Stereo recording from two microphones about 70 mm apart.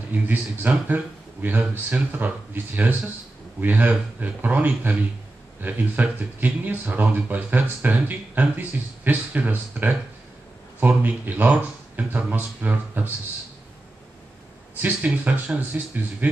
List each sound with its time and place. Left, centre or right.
0.1 s speech: right
14.8 s a man's voice: centre